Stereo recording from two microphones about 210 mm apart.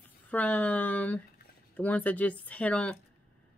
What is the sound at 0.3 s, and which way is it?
A woman's voice, 5° left (ahead or behind).